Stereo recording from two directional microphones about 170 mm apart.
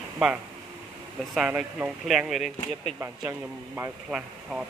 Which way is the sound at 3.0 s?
15° right (ahead or behind).